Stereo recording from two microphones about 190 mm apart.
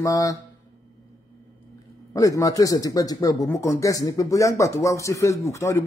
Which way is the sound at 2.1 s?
20° left (ahead or behind).